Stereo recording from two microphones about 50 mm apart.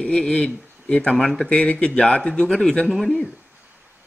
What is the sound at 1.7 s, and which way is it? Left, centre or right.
Speech, centre.